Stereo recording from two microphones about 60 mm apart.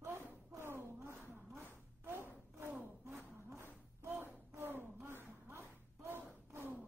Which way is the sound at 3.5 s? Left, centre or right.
Right.